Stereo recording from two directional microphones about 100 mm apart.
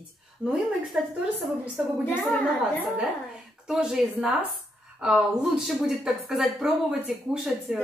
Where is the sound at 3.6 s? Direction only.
5° right (ahead or behind).